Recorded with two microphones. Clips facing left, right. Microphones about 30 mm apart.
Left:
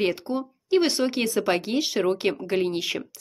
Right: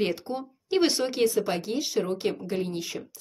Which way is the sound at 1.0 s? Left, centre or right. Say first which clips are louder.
Left 1 dB; centre.